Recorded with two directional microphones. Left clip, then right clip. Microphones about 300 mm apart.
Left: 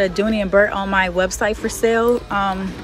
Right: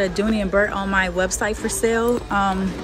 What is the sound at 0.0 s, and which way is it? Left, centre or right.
Speech, centre.